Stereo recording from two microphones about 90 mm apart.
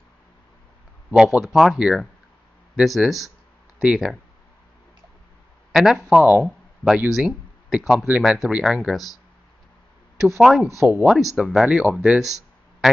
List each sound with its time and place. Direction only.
1.1 s speech: 10° right (ahead or behind)
5.7 s speech: 5° right (ahead or behind)
6.4 s a sound: 5° right (ahead or behind)
7.1 s speech: 5° right (ahead or behind)
10.2 s speech: centre (ahead or behind)